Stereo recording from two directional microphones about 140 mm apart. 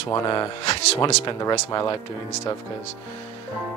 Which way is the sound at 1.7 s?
30° left (ahead or behind).